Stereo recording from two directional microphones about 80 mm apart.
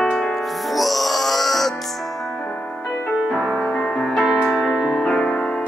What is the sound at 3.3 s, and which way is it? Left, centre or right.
Music, centre.